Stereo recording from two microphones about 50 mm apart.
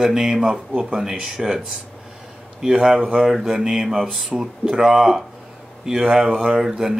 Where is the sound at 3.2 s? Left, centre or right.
Centre.